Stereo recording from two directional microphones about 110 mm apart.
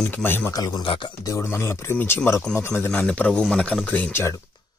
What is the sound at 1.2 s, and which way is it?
Speech, 25° left (ahead or behind).